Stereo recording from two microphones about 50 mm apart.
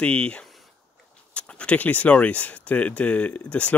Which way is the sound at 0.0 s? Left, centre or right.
Left.